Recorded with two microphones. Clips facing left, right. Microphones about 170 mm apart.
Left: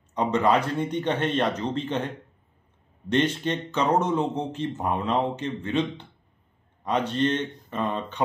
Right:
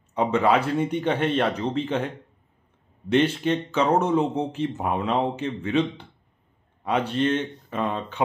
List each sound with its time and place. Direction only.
0.1 s speech: 5° right (ahead or behind)
3.1 s speech: 5° right (ahead or behind)